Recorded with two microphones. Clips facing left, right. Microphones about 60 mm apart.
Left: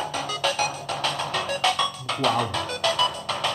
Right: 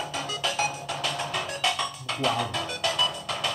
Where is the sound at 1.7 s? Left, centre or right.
Left.